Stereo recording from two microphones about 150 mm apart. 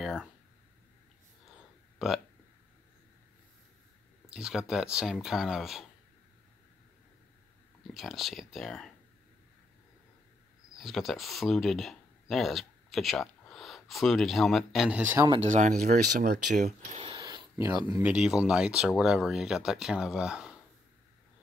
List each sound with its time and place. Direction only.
0.0 s a sound: centre (ahead or behind)
2.0 s speech: 5° right (ahead or behind)
4.3 s speech: 5° right (ahead or behind)
7.8 s speech: centre (ahead or behind)
10.8 s speech: centre (ahead or behind)
15.4 s speech: 50° right (ahead or behind)
17.2 s a sound: 25° right (ahead or behind)
18.1 s speech: 5° right (ahead or behind)